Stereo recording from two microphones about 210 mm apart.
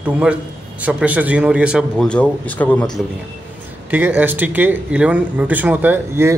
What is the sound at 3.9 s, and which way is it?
A man's voice, 10° right (ahead or behind).